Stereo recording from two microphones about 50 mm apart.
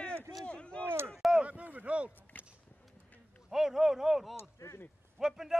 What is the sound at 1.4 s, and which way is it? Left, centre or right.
Speech, right.